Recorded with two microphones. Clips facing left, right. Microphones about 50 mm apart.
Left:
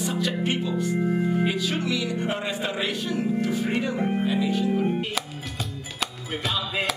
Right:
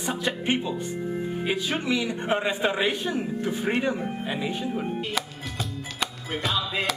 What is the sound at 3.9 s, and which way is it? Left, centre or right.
Speech, left.